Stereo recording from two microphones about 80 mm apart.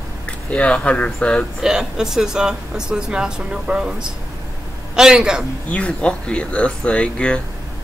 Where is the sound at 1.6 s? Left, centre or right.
Centre.